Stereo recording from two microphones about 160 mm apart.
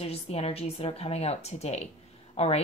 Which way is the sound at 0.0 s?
40° left (ahead or behind).